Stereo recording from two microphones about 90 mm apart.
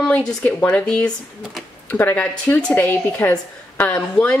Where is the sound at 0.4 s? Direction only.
20° left (ahead or behind).